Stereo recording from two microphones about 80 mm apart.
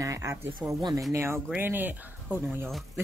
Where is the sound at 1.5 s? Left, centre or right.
Right.